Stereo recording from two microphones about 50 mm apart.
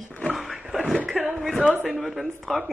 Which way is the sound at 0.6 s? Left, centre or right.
Centre.